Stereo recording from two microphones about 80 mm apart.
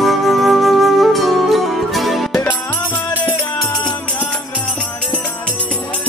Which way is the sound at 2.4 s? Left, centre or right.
Left.